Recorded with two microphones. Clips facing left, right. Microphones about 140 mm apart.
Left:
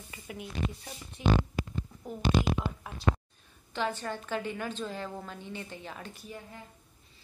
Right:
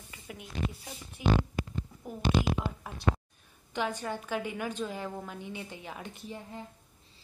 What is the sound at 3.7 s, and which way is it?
A woman's voice, 10° right (ahead or behind).